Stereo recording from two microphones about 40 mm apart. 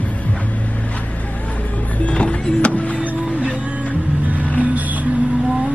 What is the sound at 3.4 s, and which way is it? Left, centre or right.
Music, right.